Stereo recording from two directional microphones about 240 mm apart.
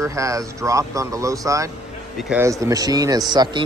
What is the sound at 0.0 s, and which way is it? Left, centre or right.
A man's voice, centre.